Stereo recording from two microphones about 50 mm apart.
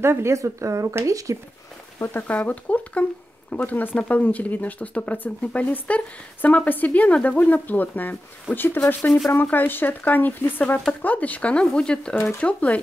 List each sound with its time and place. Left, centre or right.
0.0 s speech: right
2.0 s speech: left
2.3 s speech: left
11.7 s speech: centre